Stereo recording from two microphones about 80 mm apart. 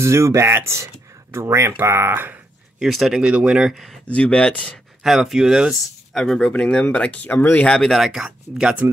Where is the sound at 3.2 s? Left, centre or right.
Centre.